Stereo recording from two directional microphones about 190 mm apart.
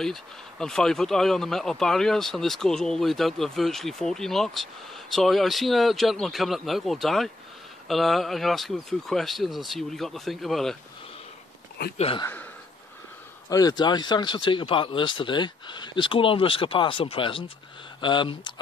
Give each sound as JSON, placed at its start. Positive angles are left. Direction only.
{"t": 0.0, "sound": "speech", "side_deg": 0}
{"t": 12.0, "sound": "speech", "side_deg": 30}
{"t": 13.5, "sound": "speech", "side_deg": 20}